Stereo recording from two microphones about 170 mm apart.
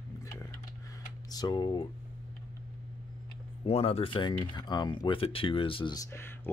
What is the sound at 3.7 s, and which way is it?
Speech, 35° left (ahead or behind).